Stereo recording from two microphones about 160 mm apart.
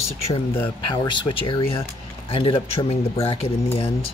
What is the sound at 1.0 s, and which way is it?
Speech, 30° left (ahead or behind).